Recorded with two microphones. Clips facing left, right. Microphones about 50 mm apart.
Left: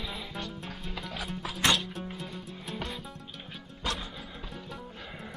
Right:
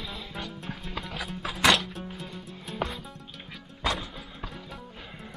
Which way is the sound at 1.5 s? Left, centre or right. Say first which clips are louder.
Right 5 dB; right.